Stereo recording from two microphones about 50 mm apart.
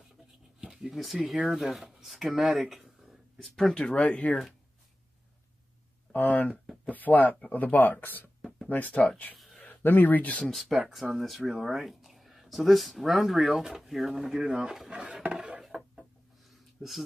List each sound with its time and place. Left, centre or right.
0.6 s a sound: centre
1.2 s speech: centre
3.8 s speech: left
6.1 s speech: left
8.4 s a sound: centre
8.6 s speech: left
10.4 s speech: centre
14.9 s speech: right
15.6 s chicken: centre
16.8 s speech: centre